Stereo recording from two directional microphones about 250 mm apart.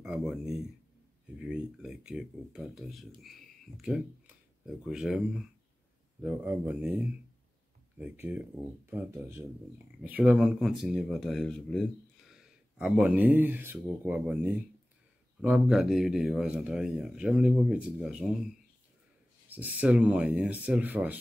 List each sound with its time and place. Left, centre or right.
0.0 s speech: centre
6.2 s speech: centre
19.5 s speech: centre